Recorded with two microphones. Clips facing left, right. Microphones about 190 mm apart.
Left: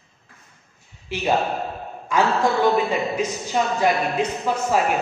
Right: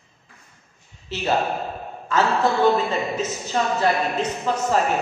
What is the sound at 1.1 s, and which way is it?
A man's voice, 10° left (ahead or behind).